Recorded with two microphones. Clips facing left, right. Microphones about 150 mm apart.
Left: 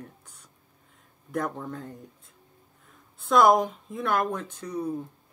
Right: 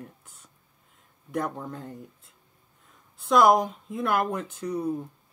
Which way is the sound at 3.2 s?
Centre (ahead or behind).